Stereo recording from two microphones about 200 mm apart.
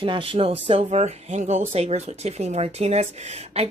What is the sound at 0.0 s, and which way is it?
Speech, 25° right (ahead or behind).